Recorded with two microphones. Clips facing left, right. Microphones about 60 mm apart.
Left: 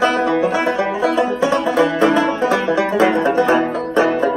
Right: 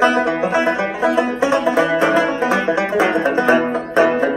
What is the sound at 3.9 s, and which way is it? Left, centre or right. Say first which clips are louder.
Banjo: right 1 dB; right.